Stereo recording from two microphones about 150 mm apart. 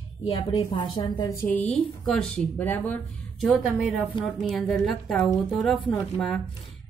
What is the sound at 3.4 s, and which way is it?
A woman's voice, 5° right (ahead or behind).